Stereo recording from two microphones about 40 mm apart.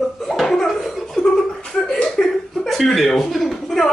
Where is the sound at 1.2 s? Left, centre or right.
Centre.